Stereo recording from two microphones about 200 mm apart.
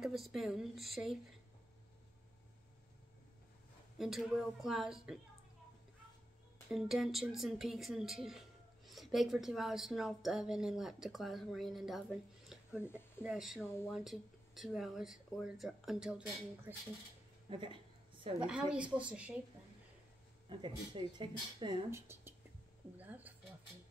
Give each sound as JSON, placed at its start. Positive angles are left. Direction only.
{"t": 0.0, "sound": "a woman's voice", "side_deg": 0}
{"t": 4.0, "sound": "a woman's voice", "side_deg": 0}
{"t": 6.7, "sound": "a woman's voice", "side_deg": 0}
{"t": 12.8, "sound": "speech", "side_deg": 10}
{"t": 13.2, "sound": "a woman's voice", "side_deg": 0}
{"t": 17.5, "sound": "a sound", "side_deg": -25}
{"t": 18.4, "sound": "a woman's voice", "side_deg": -5}
{"t": 20.4, "sound": "speech", "side_deg": -25}
{"t": 22.9, "sound": "a sound", "side_deg": -10}